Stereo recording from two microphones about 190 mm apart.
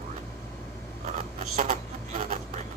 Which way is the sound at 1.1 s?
40° right (ahead or behind).